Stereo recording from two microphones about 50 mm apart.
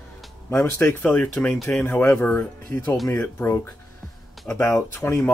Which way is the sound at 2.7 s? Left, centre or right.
Left.